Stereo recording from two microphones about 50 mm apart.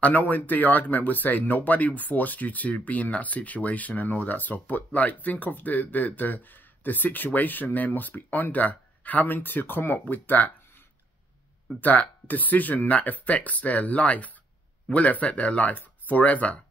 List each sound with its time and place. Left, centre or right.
0.0 s speech: left
11.8 s speech: left